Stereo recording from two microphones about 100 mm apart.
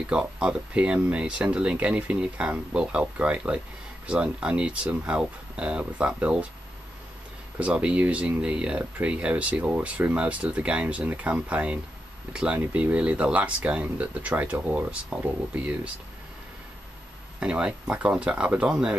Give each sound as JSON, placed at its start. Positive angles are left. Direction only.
{"t": 0.1, "sound": "speech", "side_deg": -10}
{"t": 7.5, "sound": "speech", "side_deg": -10}
{"t": 17.4, "sound": "speech", "side_deg": -10}